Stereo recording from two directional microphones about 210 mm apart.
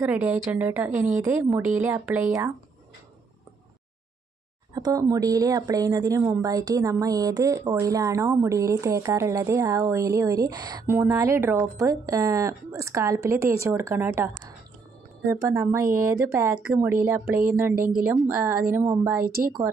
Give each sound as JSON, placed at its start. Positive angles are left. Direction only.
{"t": 0.0, "sound": "speech", "side_deg": -5}
{"t": 4.7, "sound": "speech", "side_deg": -20}
{"t": 19.2, "sound": "speech", "side_deg": -45}